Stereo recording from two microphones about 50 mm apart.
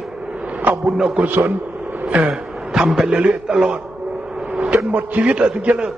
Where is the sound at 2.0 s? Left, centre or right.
Right.